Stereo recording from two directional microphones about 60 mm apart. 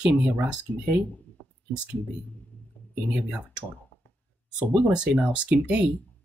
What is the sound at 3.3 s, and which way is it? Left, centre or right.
Speech, centre.